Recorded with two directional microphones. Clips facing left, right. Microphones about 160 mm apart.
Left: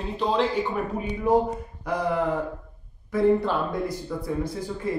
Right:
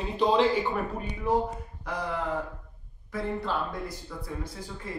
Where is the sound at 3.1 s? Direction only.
15° left (ahead or behind).